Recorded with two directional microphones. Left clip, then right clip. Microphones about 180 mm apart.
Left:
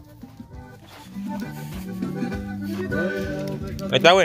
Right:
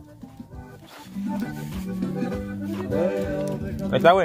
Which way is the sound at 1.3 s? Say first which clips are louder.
Right 2 dB; 15° right (ahead or behind).